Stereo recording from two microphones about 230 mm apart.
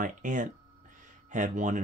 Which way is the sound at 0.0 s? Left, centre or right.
Right.